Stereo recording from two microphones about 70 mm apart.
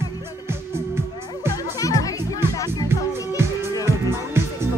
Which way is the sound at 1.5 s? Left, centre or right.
Left.